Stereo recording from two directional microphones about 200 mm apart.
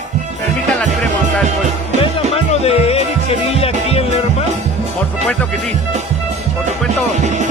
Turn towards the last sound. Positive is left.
turn(degrees=-35)  # may be behind; listen again after turning